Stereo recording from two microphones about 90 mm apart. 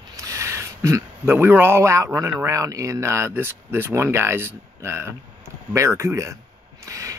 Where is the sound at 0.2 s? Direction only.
35° right (ahead or behind).